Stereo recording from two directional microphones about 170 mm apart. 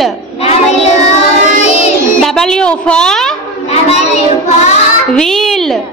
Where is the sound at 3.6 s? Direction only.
40° left (ahead or behind).